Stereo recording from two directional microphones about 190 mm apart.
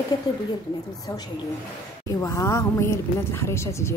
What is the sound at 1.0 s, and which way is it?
A woman's voice, 20° left (ahead or behind).